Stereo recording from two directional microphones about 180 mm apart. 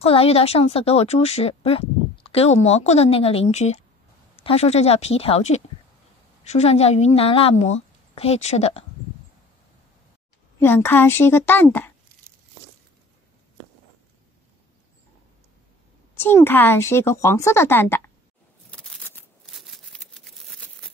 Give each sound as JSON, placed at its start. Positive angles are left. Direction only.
{"t": 0.0, "sound": "a woman's voice", "side_deg": 35}
{"t": 10.6, "sound": "a woman's voice", "side_deg": 10}
{"t": 16.2, "sound": "a woman's voice", "side_deg": 10}
{"t": 18.7, "sound": "a sound", "side_deg": 5}